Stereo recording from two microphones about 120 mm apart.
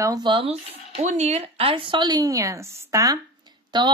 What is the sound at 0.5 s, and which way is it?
Speech, 75° right (ahead or behind).